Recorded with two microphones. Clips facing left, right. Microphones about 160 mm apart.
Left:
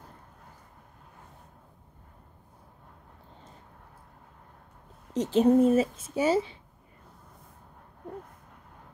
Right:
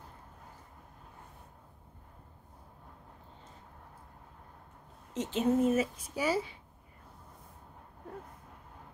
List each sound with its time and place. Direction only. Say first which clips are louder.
5.1 s a woman's voice: left 8 dB; 35° left (ahead or behind)